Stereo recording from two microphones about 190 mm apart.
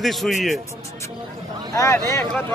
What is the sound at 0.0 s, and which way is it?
Speech, centre (ahead or behind).